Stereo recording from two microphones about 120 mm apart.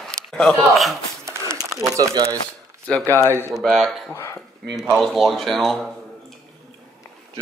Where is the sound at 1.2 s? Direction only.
30° right (ahead or behind).